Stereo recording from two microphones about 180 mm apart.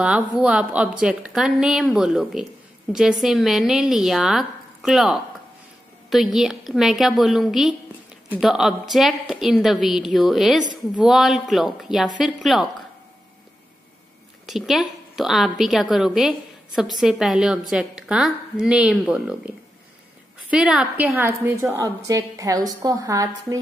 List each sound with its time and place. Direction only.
0.0 s a woman's voice: 5° right (ahead or behind)
14.4 s a woman's voice: centre (ahead or behind); by 23.6 s 20° right (ahead or behind)